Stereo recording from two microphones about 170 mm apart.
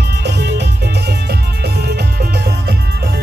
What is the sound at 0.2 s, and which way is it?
Music, 85° right.